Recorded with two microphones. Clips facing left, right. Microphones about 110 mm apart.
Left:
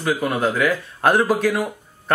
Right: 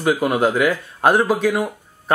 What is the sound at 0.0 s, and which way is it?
Speech, 15° right (ahead or behind).